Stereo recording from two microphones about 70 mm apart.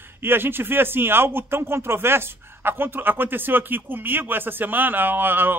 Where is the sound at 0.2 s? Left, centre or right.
Right.